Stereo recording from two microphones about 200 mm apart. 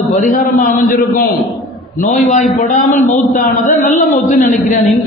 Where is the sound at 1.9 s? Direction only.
30° left (ahead or behind).